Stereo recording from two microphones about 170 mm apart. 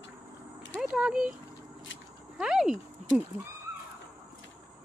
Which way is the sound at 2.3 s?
5° right (ahead or behind).